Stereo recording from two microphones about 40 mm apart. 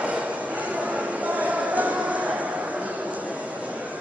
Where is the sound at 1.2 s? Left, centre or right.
Right.